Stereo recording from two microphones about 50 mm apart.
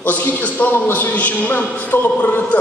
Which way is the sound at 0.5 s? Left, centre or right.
Left.